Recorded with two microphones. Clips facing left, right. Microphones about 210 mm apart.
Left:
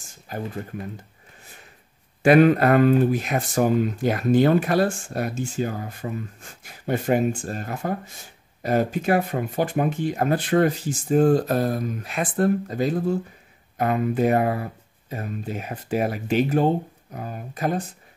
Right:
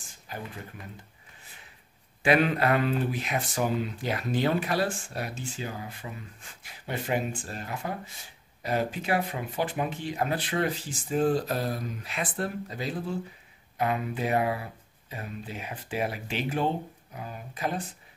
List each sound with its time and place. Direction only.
0.3 s speech: 45° left (ahead or behind)
2.2 s speech: 45° left (ahead or behind)